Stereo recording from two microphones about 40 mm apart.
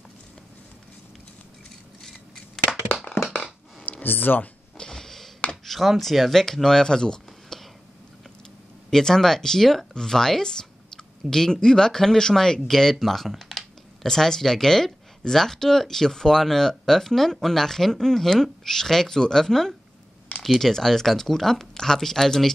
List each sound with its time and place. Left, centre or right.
2.7 s a sound: left
3.2 s crushing: left
4.0 s speech: left
4.7 s a sound: centre
5.7 s speech: centre
6.3 s speech: centre
8.9 s speech: centre